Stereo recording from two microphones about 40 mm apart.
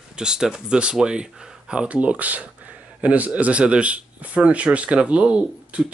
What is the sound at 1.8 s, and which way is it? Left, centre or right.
Speech, right.